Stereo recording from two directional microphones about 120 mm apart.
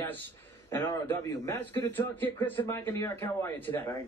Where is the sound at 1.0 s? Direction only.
20° left (ahead or behind).